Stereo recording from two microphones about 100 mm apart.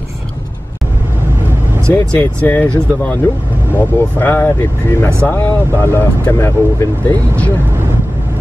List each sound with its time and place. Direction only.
1.9 s speech: 15° left (ahead or behind)